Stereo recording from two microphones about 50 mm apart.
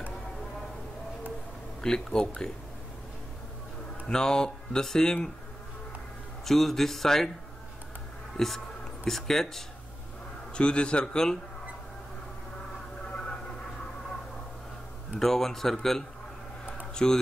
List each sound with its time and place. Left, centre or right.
1.8 s speech: centre
4.1 s speech: centre
6.4 s speech: centre
8.4 s a man's voice: centre
10.5 s a man's voice: centre
13.1 s a sound: centre
15.1 s speech: centre